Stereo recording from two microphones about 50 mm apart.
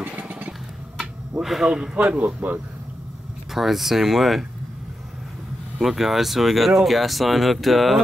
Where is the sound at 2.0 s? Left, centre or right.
Right.